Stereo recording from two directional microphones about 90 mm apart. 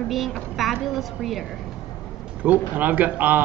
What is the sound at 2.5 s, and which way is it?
Speech, 20° right (ahead or behind).